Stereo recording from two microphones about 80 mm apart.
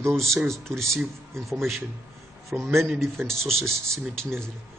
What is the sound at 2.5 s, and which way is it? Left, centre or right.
Speech, centre.